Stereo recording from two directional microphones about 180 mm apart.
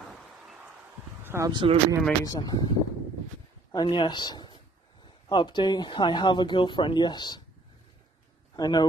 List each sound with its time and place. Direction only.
1.2 s a sound: 15° right (ahead or behind)
1.5 s speech: 25° right (ahead or behind)
2.2 s a woman's voice: 20° left (ahead or behind)
3.7 s a woman's voice: 25° left (ahead or behind)
8.5 s a woman's voice: 25° left (ahead or behind)